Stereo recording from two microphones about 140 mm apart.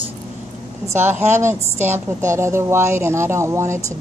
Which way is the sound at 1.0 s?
55° right (ahead or behind).